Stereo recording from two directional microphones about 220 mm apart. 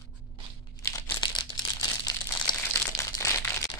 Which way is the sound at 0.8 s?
10° left (ahead or behind).